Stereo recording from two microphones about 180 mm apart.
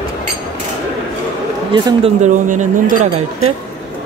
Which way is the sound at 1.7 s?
25° right (ahead or behind).